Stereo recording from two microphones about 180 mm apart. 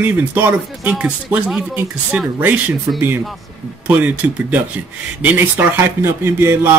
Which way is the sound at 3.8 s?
10° right (ahead or behind).